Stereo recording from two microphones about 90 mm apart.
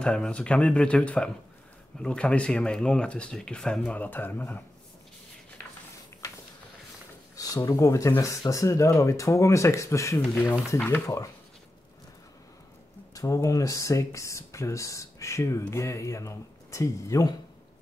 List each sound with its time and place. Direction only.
0.0 s speech: 10° left (ahead or behind)
7.3 s speech: 40° left (ahead or behind)
10.4 s speech: 25° left (ahead or behind)
13.1 s speech: 35° left (ahead or behind)